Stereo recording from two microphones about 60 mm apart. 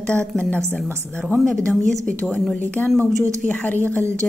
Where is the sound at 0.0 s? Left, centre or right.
Centre.